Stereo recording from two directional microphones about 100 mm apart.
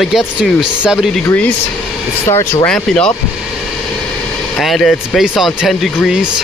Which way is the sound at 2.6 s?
10° left (ahead or behind).